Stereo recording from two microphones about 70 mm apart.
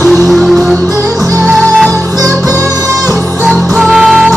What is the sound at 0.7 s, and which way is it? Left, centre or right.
Music, right.